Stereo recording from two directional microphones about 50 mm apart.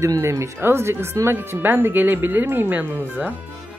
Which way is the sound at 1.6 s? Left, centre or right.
Right.